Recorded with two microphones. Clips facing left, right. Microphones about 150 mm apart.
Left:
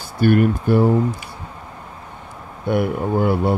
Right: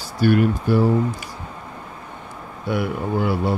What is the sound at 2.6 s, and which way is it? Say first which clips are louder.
Speech: left 4 dB; 50° left (ahead or behind).